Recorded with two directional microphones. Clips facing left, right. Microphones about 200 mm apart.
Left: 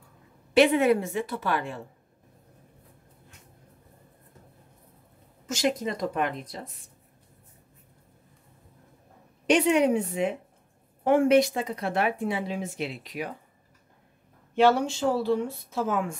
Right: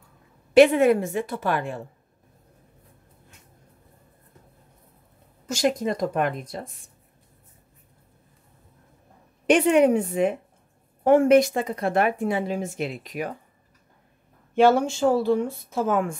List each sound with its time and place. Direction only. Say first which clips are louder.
0.6 s speech: right 4 dB; 50° right (ahead or behind)
5.5 s speech: right 3 dB; 45° right (ahead or behind)
9.5 s speech: right 4 dB; 50° right (ahead or behind)
14.5 s speech: right 3 dB; 50° right (ahead or behind)